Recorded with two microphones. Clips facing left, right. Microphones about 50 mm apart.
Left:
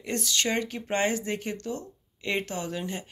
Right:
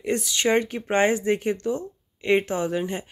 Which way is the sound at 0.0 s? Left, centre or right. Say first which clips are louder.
Right 5 dB; centre.